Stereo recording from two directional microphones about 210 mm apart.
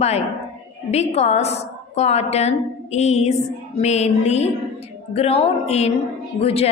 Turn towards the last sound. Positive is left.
turn(degrees=30)  # may be behind; listen again after turning